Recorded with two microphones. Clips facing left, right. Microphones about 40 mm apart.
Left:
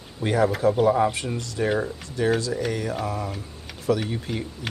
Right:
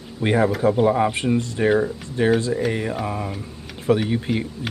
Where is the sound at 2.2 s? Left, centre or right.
Right.